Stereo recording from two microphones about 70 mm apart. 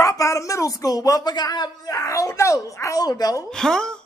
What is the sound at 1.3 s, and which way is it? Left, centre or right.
A woman's voice, left.